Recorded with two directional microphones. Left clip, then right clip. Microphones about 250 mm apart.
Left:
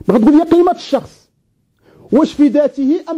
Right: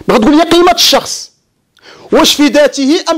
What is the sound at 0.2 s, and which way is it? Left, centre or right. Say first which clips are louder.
Speech: right 1 dB; right.